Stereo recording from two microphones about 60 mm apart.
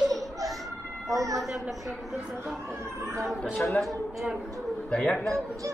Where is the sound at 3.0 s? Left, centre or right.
Right.